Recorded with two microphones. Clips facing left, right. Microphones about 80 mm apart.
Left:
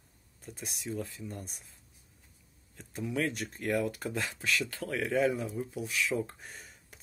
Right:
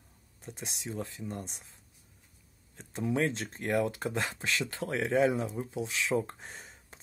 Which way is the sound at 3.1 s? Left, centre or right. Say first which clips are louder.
Right 3 dB; right.